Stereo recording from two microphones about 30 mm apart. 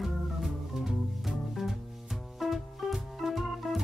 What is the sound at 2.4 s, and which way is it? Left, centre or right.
Music, centre.